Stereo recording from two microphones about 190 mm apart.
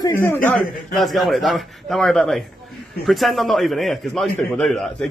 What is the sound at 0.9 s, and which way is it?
A man's voice, centre (ahead or behind).